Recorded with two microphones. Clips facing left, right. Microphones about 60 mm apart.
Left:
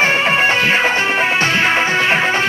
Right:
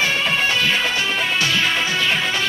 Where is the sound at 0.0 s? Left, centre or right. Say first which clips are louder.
Left 6 dB; left.